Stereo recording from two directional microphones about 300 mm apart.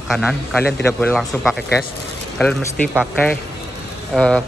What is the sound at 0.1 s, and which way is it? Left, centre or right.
Speech, centre.